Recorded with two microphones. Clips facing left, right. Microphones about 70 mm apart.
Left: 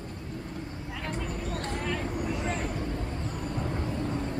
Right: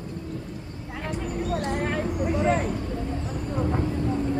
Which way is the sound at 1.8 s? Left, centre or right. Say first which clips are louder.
Right 5 dB; right.